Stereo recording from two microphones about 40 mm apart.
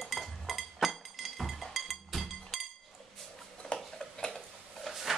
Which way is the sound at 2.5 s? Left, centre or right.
Centre.